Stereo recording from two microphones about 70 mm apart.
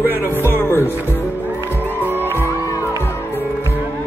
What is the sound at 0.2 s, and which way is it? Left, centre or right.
Music, left.